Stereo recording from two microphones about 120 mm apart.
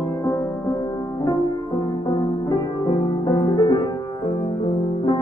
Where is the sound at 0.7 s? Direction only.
45° left (ahead or behind).